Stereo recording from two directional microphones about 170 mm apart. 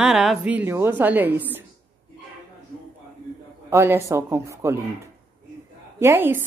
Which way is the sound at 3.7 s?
15° right (ahead or behind).